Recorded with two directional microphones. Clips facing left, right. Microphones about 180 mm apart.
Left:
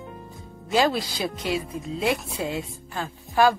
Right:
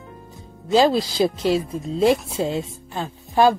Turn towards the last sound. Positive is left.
turn(degrees=-25)  # may be behind; listen again after turning